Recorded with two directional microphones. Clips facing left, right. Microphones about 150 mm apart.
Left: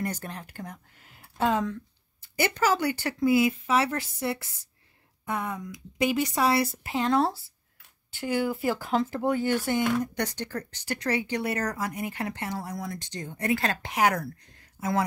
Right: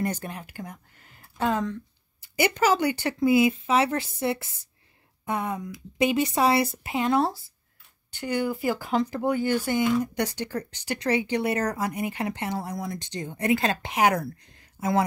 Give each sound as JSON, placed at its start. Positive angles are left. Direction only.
{"t": 0.0, "sound": "speech", "side_deg": -20}
{"t": 0.3, "sound": "speech", "side_deg": -5}
{"t": 2.2, "sound": "speech", "side_deg": -15}
{"t": 7.0, "sound": "speech", "side_deg": -5}